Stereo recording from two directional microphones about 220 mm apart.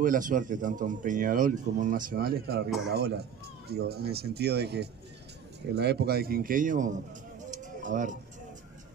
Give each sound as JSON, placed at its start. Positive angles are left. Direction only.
{"t": 0.0, "sound": "speech", "side_deg": -35}
{"t": 3.6, "sound": "speech", "side_deg": -45}
{"t": 7.5, "sound": "music", "side_deg": -35}